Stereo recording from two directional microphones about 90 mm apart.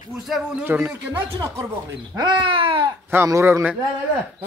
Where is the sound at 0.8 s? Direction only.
20° right (ahead or behind).